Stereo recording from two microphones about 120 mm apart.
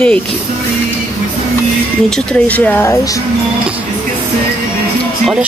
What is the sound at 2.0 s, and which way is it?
Speech, 10° left (ahead or behind).